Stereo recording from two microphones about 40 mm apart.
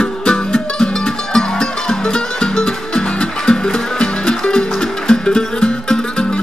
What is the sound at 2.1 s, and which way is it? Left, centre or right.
Music, centre.